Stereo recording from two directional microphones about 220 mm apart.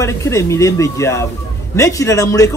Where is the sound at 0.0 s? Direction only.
15° left (ahead or behind).